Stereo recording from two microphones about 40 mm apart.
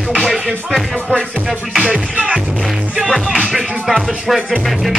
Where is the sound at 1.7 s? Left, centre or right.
Right.